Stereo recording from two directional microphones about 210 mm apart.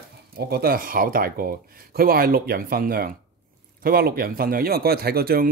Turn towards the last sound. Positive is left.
turn(degrees=-45)  # may be behind; listen again after turning